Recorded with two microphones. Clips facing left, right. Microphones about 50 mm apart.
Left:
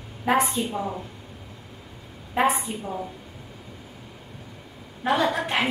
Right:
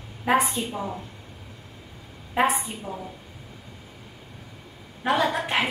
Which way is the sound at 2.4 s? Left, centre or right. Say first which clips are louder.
Left 1 dB; centre.